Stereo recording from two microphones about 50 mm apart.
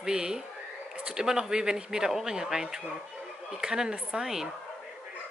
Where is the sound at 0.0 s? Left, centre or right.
Centre.